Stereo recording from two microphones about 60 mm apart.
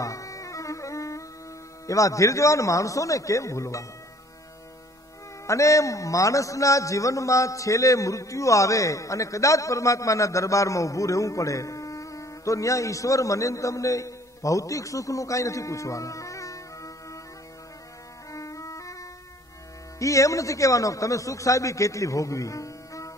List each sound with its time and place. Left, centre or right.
0.0 s music: left
1.9 s a man's voice: left
5.5 s a man's voice: left
18.3 s music: left
20.0 s a man's voice: left